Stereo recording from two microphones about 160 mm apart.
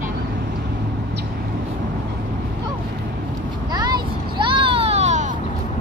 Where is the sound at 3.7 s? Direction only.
25° right (ahead or behind); by 5.3 s 45° right (ahead or behind).